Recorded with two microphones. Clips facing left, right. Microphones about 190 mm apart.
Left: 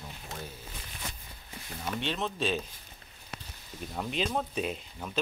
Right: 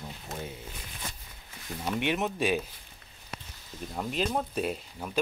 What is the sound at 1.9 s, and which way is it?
Speech, 15° right (ahead or behind).